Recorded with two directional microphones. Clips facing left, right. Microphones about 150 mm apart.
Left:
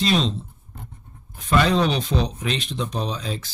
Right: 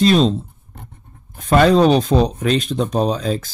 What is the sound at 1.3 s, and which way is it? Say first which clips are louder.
Speech: right 7 dB; 45° right (ahead or behind).